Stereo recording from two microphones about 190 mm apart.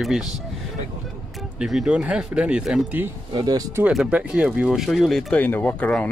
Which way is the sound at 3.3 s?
20° right (ahead or behind).